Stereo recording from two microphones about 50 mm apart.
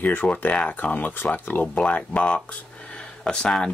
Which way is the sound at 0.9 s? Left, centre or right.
Left.